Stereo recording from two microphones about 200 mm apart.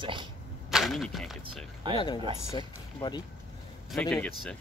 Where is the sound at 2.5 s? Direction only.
20° left (ahead or behind).